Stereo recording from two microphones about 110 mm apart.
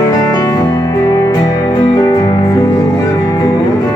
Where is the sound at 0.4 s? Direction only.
30° left (ahead or behind).